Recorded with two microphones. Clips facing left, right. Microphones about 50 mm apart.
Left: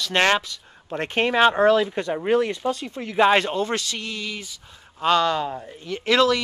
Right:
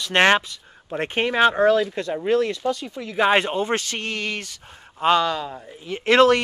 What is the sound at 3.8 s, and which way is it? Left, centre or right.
Speech, right.